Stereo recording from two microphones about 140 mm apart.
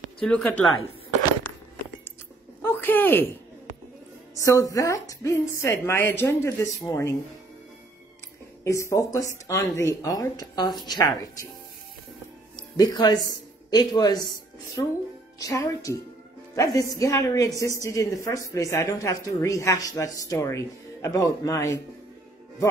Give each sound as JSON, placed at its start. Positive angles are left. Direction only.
{"t": 0.2, "sound": "speech", "side_deg": 5}
{"t": 2.6, "sound": "a sound", "side_deg": 15}
{"t": 4.4, "sound": "a woman's voice", "side_deg": 25}
{"t": 8.6, "sound": "a woman's voice", "side_deg": 20}
{"t": 12.5, "sound": "speech", "side_deg": 30}
{"t": 15.3, "sound": "a woman's voice", "side_deg": 25}